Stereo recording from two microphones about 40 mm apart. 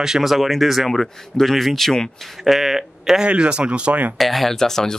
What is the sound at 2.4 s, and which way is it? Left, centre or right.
Speech, centre.